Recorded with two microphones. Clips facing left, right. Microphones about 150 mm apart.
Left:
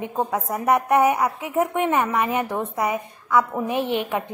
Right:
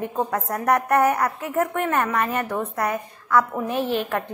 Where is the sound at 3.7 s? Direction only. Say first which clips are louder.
Even; 65° left (ahead or behind).